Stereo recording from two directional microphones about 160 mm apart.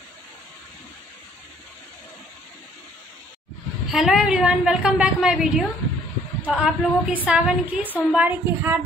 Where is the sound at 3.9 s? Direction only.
5° right (ahead or behind).